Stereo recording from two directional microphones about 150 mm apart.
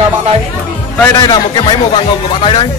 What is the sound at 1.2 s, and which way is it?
Speech, 30° left (ahead or behind).